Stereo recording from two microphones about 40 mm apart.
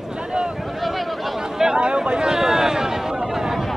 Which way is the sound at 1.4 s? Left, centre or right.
Centre.